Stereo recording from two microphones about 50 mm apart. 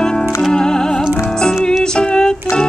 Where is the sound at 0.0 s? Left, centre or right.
Centre.